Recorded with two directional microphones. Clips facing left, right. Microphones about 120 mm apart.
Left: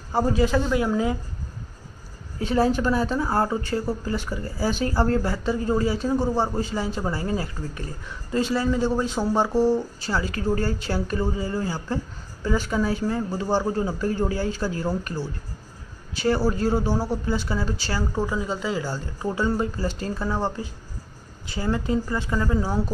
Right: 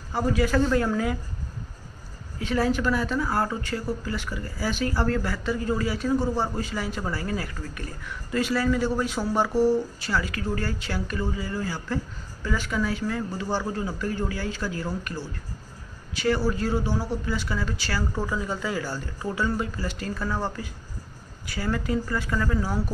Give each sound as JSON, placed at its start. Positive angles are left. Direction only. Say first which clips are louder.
{"t": 0.1, "sound": "speech", "louder": "left 3 dB", "side_deg": 30}
{"t": 0.6, "sound": "speech", "louder": "even", "side_deg": 10}
{"t": 2.3, "sound": "speech", "louder": "left 3 dB", "side_deg": 30}
{"t": 18.1, "sound": "speech", "louder": "left 3 dB", "side_deg": 15}